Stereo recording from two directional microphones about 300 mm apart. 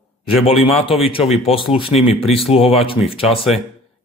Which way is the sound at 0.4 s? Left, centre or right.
Centre.